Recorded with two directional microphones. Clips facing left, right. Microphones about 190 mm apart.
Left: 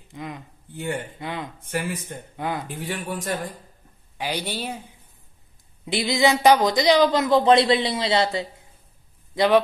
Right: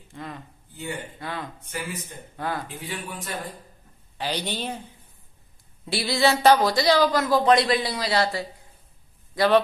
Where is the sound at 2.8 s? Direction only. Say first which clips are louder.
Left 5 dB; 45° left (ahead or behind).